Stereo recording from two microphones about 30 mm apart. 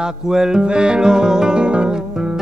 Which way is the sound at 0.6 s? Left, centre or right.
Right.